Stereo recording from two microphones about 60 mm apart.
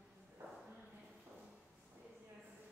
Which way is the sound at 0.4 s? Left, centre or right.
Right.